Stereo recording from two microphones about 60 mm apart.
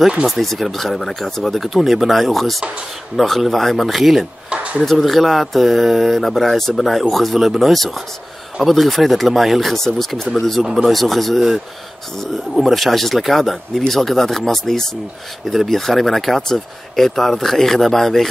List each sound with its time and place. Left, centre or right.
0.4 s speech: centre
10.6 s speech: centre